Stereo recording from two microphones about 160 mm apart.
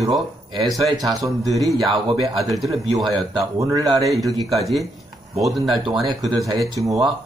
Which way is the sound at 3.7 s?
25° right (ahead or behind).